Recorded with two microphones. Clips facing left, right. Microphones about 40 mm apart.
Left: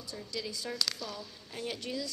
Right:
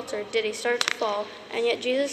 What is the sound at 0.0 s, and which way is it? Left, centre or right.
A woman's voice, right.